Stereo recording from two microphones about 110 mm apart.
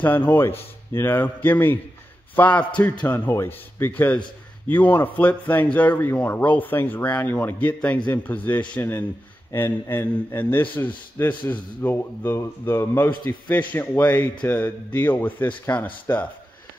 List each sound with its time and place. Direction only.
0.0 s speech: 15° left (ahead or behind)